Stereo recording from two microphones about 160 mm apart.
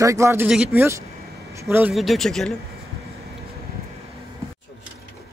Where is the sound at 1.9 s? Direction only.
Centre (ahead or behind).